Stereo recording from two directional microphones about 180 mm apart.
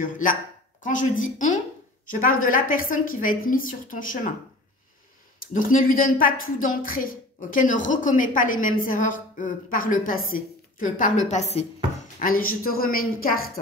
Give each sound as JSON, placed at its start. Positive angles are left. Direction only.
{"t": 0.8, "sound": "a woman's voice", "side_deg": 45}
{"t": 5.4, "sound": "a woman's voice", "side_deg": 50}
{"t": 12.2, "sound": "a woman's voice", "side_deg": 50}